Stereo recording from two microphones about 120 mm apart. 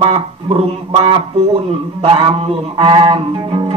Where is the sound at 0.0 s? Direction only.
50° right (ahead or behind).